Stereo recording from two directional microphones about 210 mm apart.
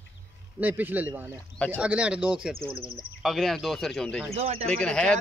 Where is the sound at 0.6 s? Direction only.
10° right (ahead or behind).